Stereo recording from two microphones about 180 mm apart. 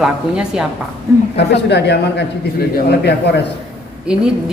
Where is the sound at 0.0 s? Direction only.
5° right (ahead or behind).